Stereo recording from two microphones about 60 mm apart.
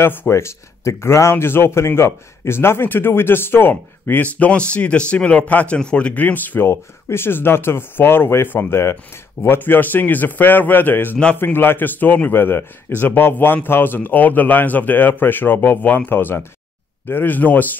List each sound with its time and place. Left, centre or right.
0.0 s a man's voice: left
0.3 s speech: left
1.3 s a man's voice: left
4.2 s a man's voice: left
6.7 s a man's voice: left